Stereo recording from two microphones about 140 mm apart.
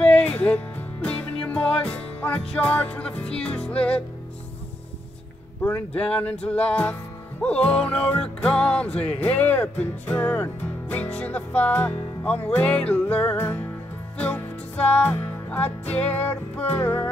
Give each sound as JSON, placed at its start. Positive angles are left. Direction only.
{"t": 0.0, "sound": "music", "side_deg": 10}
{"t": 5.6, "sound": "music", "side_deg": 10}